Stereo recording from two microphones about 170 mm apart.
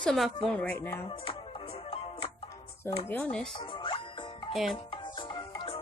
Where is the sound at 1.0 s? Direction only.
35° left (ahead or behind).